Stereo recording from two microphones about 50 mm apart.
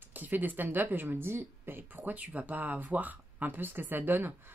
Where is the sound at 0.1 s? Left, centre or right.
Right.